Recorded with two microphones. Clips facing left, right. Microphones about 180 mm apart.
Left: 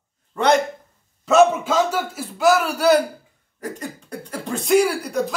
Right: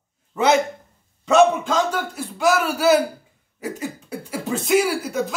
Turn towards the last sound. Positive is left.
turn(degrees=-5)  # may be behind; listen again after turning